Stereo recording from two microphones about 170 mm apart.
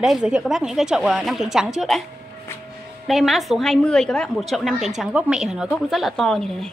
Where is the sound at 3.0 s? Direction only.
Centre (ahead or behind).